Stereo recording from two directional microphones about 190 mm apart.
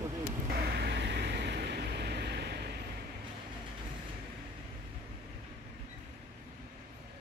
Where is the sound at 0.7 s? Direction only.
60° right (ahead or behind).